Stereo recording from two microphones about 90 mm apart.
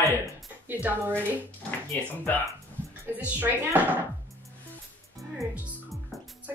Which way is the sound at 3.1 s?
20° right (ahead or behind).